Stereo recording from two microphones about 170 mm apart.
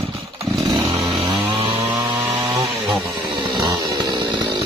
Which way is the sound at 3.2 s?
30° right (ahead or behind).